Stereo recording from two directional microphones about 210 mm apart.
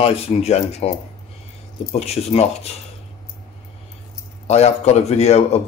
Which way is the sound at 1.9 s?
30° left (ahead or behind).